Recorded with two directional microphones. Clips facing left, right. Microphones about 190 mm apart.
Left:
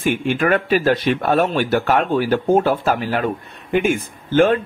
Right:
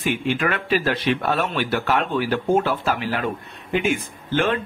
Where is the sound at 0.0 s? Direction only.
45° left (ahead or behind).